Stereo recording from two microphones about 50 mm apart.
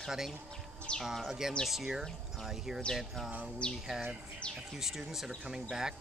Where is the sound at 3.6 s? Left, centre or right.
Centre.